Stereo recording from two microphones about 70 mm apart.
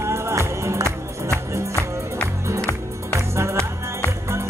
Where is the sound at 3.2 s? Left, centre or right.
Right.